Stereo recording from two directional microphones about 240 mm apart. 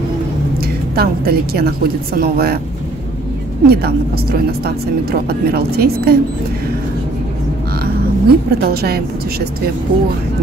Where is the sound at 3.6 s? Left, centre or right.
Right.